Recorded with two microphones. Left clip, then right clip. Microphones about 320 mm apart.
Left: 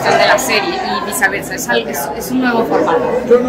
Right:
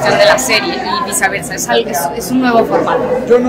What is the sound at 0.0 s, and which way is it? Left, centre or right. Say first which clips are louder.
A woman's voice: right 2 dB; centre.